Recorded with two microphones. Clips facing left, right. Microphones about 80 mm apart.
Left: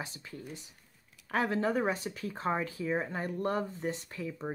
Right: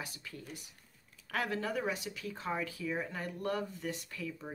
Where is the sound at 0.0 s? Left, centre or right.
Left.